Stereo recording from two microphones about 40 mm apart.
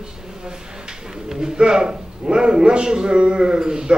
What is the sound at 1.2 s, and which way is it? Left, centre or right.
A man's voice, centre.